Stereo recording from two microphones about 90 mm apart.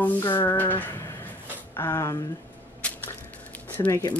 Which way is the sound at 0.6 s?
20° left (ahead or behind).